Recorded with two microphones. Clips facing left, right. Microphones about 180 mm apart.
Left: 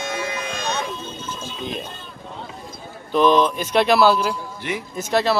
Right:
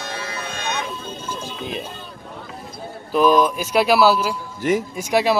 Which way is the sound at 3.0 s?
5° right (ahead or behind).